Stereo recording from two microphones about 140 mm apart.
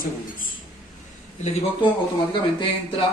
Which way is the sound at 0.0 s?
90° left.